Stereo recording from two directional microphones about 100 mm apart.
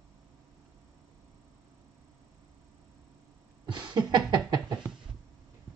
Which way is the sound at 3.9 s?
45° right (ahead or behind).